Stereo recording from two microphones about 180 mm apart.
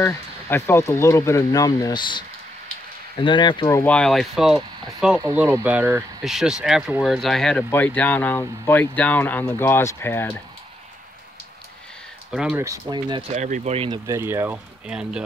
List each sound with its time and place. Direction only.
0.0 s speech: 15° left (ahead or behind)
3.6 s speech: 10° left (ahead or behind)
12.3 s speech: 5° right (ahead or behind)
12.6 s speech: 20° right (ahead or behind)
13.3 s speech: 40° right (ahead or behind)
13.8 s speech: 15° right (ahead or behind)